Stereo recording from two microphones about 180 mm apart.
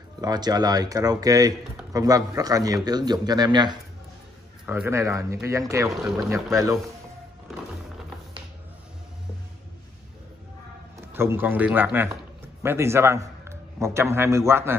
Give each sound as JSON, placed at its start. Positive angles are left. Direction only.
{"t": 0.2, "sound": "speech", "side_deg": -20}
{"t": 4.6, "sound": "speech", "side_deg": -10}
{"t": 11.1, "sound": "a man's voice", "side_deg": -15}